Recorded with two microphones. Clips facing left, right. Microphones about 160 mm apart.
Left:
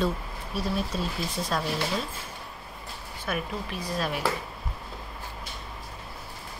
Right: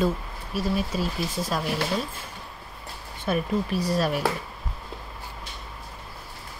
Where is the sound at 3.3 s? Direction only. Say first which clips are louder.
Right 7 dB; 40° right (ahead or behind).